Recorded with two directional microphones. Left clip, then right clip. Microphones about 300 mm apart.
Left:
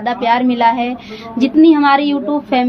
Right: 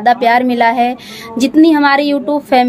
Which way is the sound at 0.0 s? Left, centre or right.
Right.